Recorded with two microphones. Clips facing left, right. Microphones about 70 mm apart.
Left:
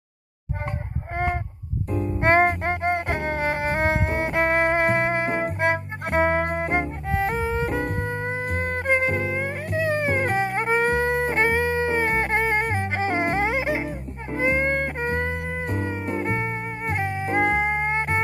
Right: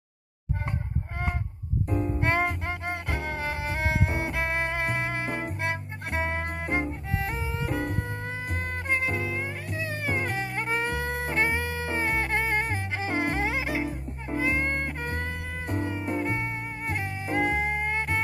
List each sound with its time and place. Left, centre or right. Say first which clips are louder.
1.1 s honk: left 9 dB; left
1.9 s music: left 2 dB; centre
2.1 s music: left 11 dB; left